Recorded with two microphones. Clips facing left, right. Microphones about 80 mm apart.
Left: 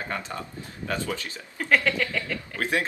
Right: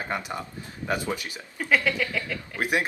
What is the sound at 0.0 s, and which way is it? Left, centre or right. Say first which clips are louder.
Speech: right 2 dB; centre.